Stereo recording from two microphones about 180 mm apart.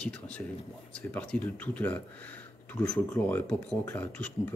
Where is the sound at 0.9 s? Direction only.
5° left (ahead or behind).